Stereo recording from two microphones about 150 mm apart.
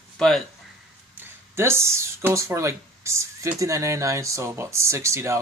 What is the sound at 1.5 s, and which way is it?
Speech, 15° right (ahead or behind).